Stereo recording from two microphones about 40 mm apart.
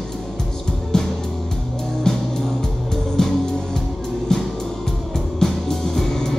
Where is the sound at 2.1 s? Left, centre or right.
Centre.